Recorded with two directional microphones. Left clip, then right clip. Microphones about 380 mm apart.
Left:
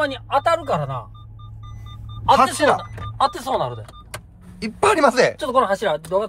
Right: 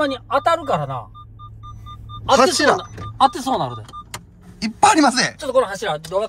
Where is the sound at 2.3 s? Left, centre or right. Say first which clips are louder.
Right 3 dB; centre.